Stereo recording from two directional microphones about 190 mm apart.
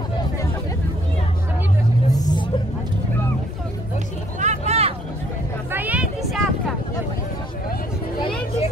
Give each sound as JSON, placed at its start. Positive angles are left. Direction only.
{"t": 2.0, "sound": "vehicle", "side_deg": 20}
{"t": 4.4, "sound": "vehicle", "side_deg": -35}
{"t": 5.7, "sound": "a sound", "side_deg": -10}